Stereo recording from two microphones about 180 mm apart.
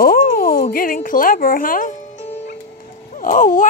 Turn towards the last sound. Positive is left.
turn(degrees=45)  # may be behind; listen again after turning